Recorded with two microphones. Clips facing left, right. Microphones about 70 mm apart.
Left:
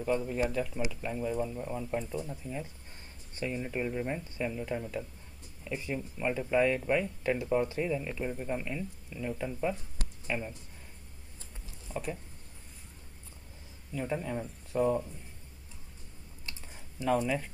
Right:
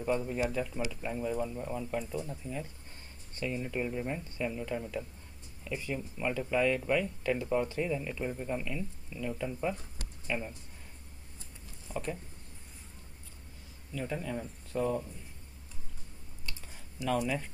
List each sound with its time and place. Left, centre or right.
0.0 s speech: centre
5.6 s speech: centre
7.3 s speech: centre
8.6 s speech: centre
9.5 s speech: centre
11.9 s speech: centre
13.9 s speech: centre
16.4 s typing: left